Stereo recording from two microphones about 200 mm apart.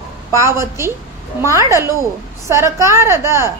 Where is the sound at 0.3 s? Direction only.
15° right (ahead or behind).